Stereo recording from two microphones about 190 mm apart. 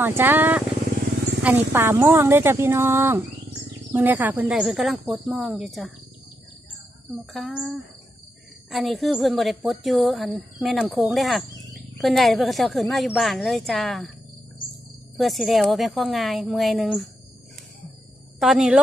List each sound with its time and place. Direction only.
0.0 s a woman's voice: 10° right (ahead or behind)
7.3 s a woman's voice: centre (ahead or behind)
15.1 s a woman's voice: centre (ahead or behind)
18.4 s a woman's voice: 5° right (ahead or behind)